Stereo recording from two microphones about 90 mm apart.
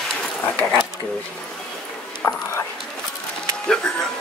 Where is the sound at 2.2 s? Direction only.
35° left (ahead or behind).